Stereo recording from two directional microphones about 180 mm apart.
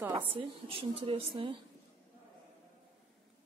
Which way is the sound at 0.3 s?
30° right (ahead or behind).